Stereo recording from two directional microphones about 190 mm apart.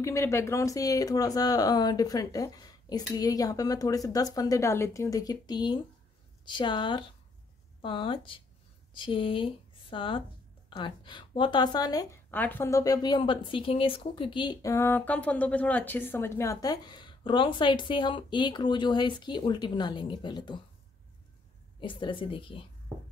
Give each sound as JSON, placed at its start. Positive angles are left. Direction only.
{"t": 0.0, "sound": "a woman's voice", "side_deg": 15}
{"t": 21.7, "sound": "a woman's voice", "side_deg": 25}